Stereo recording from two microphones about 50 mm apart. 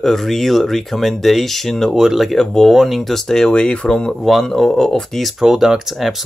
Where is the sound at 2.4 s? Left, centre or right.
Centre.